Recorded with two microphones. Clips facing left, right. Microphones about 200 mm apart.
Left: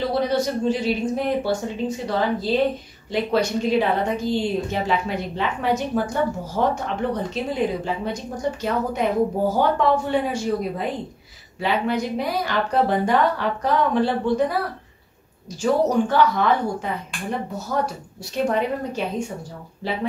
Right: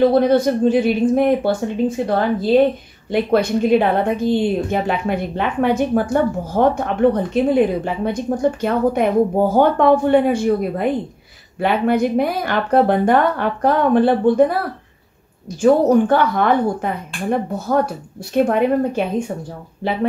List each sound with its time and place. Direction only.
0.0 s a woman's voice: 55° right (ahead or behind)
15.6 s a woman's voice: 55° right (ahead or behind)